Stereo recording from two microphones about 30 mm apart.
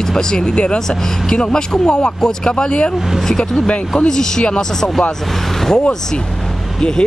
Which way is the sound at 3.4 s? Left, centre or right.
Left.